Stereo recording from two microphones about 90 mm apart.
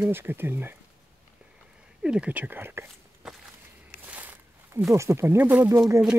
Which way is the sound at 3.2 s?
5° right (ahead or behind).